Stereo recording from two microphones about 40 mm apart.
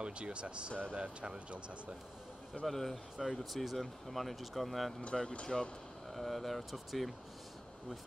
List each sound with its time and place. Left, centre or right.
0.0 s speech: right
2.6 s speech: centre